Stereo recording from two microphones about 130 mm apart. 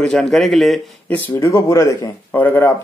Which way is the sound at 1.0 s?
15° left (ahead or behind).